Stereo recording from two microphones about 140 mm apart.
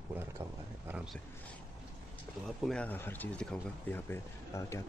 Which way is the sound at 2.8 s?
15° left (ahead or behind).